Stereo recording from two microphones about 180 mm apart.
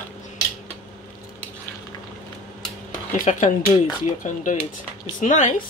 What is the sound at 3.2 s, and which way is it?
Speech, 45° left (ahead or behind).